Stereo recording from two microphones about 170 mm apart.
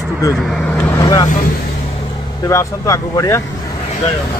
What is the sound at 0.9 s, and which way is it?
Speech, 25° left (ahead or behind).